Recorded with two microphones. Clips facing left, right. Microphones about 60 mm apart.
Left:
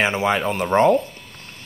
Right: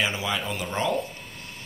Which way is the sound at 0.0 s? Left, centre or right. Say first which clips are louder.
Left 8 dB; left.